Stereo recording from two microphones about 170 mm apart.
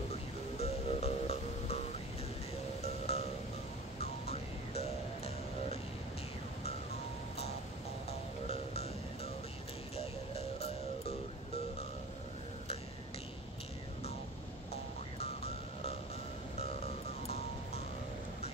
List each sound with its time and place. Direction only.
0.6 s music: 40° left (ahead or behind)
2.8 s music: 40° left (ahead or behind)
8.5 s music: 40° left (ahead or behind)
15.1 s vehicle: 40° left (ahead or behind)